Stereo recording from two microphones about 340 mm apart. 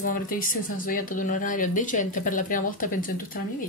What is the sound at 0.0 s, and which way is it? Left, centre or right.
Speech, left.